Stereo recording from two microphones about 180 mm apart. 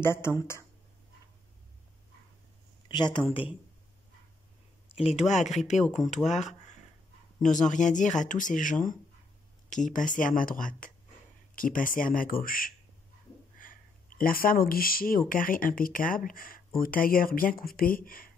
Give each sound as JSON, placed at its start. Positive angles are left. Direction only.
{"t": 0.0, "sound": "speech", "side_deg": 15}
{"t": 2.9, "sound": "speech", "side_deg": 25}
{"t": 5.0, "sound": "speech", "side_deg": 40}